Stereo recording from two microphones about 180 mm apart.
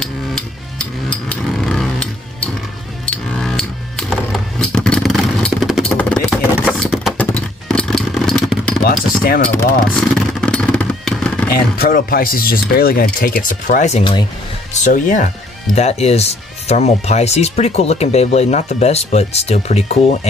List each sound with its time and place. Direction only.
0.0 s hammer: 5° left (ahead or behind)
3.1 s a sound: 5° left (ahead or behind)
6.6 s motorcycle: 5° left (ahead or behind)
8.8 s speech: 55° left (ahead or behind)
9.9 s music: 5° left (ahead or behind)
11.5 s speech: 55° left (ahead or behind); by 20.2 s 35° left (ahead or behind)